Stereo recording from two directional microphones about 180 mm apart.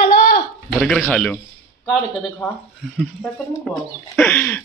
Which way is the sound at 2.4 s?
10° left (ahead or behind).